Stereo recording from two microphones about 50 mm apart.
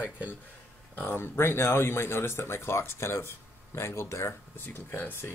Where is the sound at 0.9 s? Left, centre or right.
Left.